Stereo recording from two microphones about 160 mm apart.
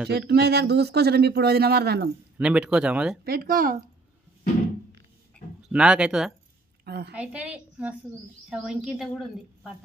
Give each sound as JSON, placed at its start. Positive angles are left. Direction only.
{"t": 0.3, "sound": "a man's voice", "side_deg": -90}
{"t": 2.3, "sound": "speech", "side_deg": -5}
{"t": 3.3, "sound": "speech", "side_deg": -65}
{"t": 5.7, "sound": "speech", "side_deg": -5}
{"t": 6.8, "sound": "a woman's voice", "side_deg": -90}
{"t": 7.2, "sound": "a woman's voice", "side_deg": -10}